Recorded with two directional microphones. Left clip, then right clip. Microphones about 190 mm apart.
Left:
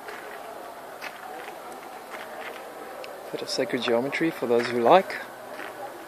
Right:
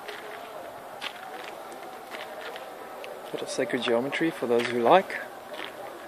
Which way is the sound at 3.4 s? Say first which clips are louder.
Left 1 dB; 5° left (ahead or behind).